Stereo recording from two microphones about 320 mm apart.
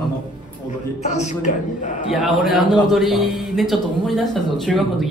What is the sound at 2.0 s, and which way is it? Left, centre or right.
A man's voice, centre.